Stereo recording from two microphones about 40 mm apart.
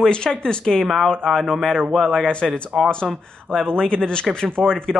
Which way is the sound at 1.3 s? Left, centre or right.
Centre.